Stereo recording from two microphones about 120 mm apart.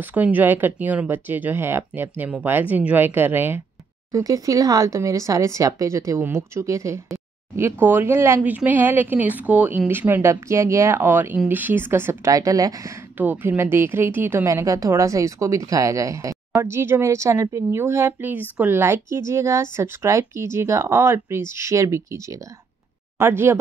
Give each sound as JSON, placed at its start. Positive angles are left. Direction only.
{"t": 0.0, "sound": "speech", "side_deg": -15}
{"t": 4.1, "sound": "a woman's voice", "side_deg": -30}
{"t": 13.2, "sound": "a woman's voice", "side_deg": -15}